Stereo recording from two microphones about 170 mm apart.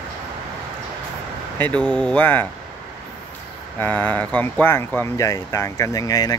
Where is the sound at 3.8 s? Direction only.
10° left (ahead or behind).